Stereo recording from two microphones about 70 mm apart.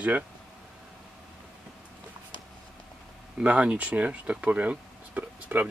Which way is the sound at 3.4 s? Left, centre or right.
Centre.